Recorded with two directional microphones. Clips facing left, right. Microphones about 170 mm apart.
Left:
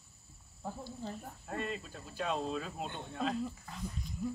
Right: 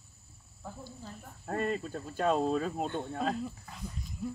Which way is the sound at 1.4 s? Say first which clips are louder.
Right 7 dB; 50° right (ahead or behind).